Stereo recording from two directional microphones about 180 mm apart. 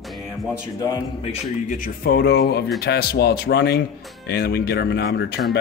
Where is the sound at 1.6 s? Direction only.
50° left (ahead or behind).